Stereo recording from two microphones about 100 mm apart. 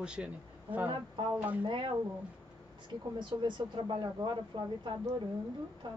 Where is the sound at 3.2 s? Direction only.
55° right (ahead or behind).